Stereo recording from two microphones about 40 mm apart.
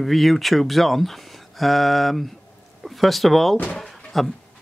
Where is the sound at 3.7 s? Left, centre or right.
Centre.